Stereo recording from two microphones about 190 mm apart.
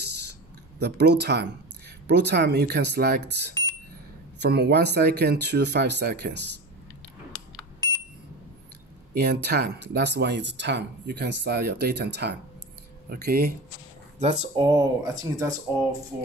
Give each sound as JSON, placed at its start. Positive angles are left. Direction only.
{"t": 0.7, "sound": "speech", "side_deg": -60}
{"t": 9.1, "sound": "speech", "side_deg": -60}
{"t": 14.2, "sound": "speech", "side_deg": -30}